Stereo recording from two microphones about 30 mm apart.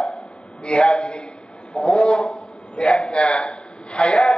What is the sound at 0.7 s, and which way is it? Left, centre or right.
A man's voice, left.